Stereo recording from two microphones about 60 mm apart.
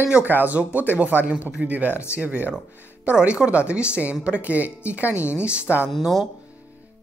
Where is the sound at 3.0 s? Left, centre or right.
Centre.